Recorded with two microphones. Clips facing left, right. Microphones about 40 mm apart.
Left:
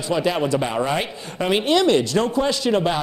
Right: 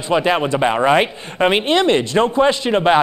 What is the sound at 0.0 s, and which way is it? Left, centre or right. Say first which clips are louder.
Speech: right 4 dB; right.